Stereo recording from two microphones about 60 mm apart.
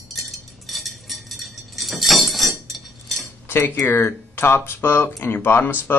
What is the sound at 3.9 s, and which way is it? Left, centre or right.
Speech, left.